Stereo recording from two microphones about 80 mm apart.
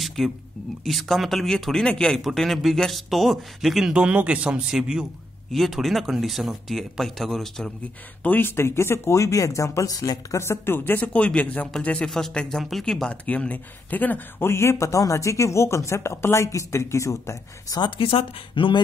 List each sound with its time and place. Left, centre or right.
0.0 s a sound: centre
0.8 s speech: centre
3.9 s speech: centre
8.2 s speech: left
12.1 s speech: centre
13.1 s speech: centre; by 17.7 s left
17.7 s speech: left